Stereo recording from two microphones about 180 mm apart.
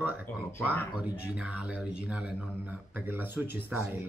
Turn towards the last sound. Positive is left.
turn(degrees=-10)  # may be behind; listen again after turning